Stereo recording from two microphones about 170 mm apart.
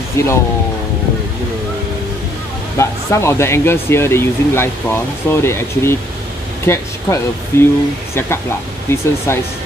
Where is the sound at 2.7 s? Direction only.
15° left (ahead or behind).